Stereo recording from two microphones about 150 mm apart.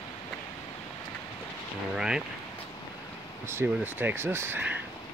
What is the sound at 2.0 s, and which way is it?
Speech, 5° right (ahead or behind).